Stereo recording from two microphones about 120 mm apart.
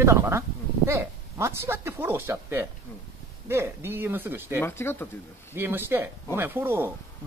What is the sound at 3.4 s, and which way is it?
Speech, 20° right (ahead or behind).